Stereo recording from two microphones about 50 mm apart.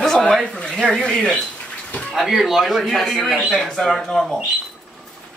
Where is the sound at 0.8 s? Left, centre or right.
Centre.